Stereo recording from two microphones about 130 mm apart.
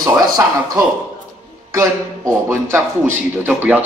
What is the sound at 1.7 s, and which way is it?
A man's voice, 20° right (ahead or behind).